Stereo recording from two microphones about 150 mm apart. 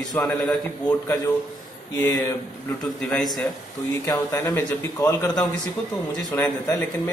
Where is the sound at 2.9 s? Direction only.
5° left (ahead or behind).